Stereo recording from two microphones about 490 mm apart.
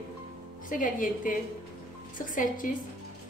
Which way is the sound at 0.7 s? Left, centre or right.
Centre.